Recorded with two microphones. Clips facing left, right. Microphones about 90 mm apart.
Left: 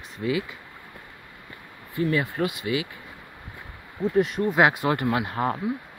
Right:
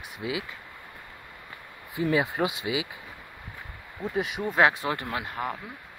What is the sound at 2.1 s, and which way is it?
Speech, 20° right (ahead or behind).